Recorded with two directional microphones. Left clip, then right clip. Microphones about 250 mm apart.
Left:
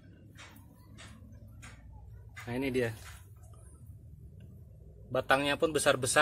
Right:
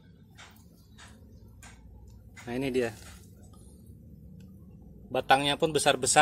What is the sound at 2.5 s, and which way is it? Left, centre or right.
Speech, centre.